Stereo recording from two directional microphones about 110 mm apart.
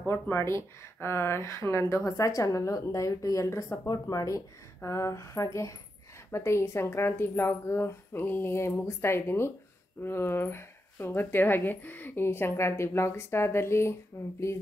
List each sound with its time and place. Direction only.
0.0 s speech: 20° left (ahead or behind)